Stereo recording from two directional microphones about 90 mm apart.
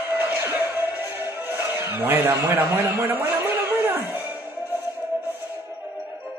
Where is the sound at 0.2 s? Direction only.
20° right (ahead or behind).